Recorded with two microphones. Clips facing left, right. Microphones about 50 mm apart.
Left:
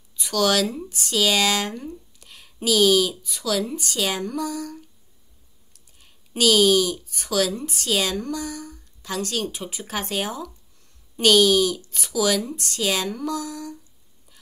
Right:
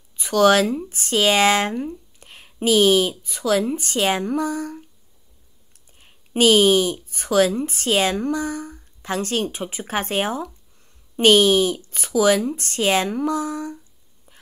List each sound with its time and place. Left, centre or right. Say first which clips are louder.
0.1 s speech: right 6 dB; right
5.9 s speech: right 5 dB; right